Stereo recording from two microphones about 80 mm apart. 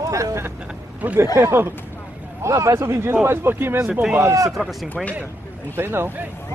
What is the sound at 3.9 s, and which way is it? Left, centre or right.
Speech, centre.